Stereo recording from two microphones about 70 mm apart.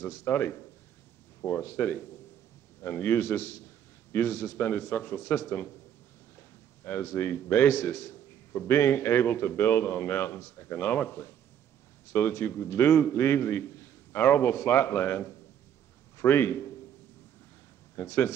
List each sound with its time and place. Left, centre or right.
0.0 s a man's voice: left
17.9 s a man's voice: left